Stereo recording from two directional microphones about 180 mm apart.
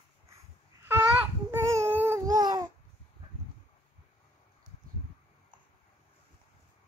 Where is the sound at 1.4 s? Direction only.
15° right (ahead or behind).